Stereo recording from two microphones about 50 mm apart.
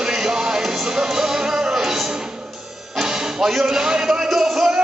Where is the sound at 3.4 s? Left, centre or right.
Centre.